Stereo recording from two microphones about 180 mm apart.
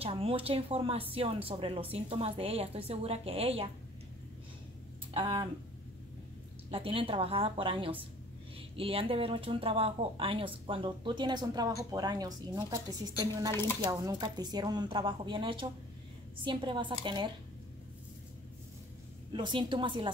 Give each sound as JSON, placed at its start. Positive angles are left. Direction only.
{"t": 0.0, "sound": "speech", "side_deg": -30}
{"t": 5.1, "sound": "speech", "side_deg": -25}
{"t": 6.7, "sound": "speech", "side_deg": -30}
{"t": 13.5, "sound": "speech", "side_deg": 15}
{"t": 13.8, "sound": "speech", "side_deg": -20}
{"t": 19.3, "sound": "speech", "side_deg": -25}